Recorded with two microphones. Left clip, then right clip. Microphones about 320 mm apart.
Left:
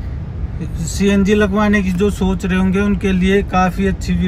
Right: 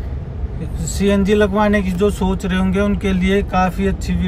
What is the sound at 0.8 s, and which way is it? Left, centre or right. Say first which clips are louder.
Speech: left 1 dB; centre.